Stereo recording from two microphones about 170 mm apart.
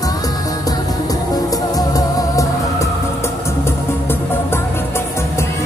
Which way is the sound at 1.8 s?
20° left (ahead or behind).